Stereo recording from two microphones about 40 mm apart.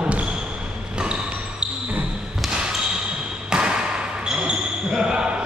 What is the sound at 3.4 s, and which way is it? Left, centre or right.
Basketball bounce, right.